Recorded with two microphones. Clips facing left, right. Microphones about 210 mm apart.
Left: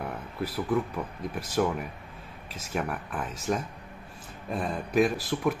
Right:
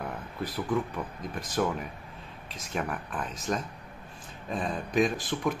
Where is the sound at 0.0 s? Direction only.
10° left (ahead or behind).